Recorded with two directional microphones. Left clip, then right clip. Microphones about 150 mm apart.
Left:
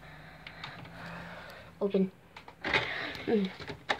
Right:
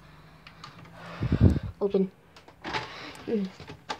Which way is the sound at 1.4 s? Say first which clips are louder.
Right 5 dB; 45° right (ahead or behind).